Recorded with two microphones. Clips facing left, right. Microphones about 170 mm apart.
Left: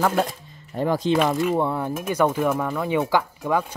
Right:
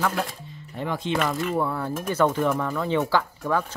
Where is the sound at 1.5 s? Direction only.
20° left (ahead or behind).